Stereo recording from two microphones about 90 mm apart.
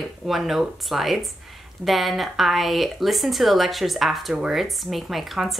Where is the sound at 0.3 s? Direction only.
Centre (ahead or behind).